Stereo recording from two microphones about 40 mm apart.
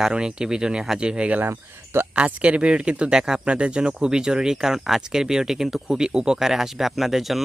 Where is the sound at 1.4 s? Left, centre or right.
Right.